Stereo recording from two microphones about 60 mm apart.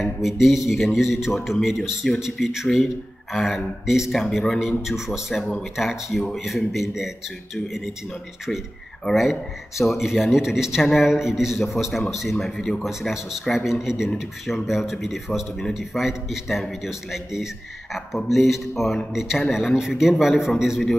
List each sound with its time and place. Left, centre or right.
0.0 s a man's voice: centre
9.1 s a man's voice: centre